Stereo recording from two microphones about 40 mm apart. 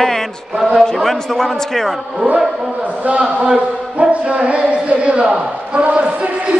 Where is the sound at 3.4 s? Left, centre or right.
Right.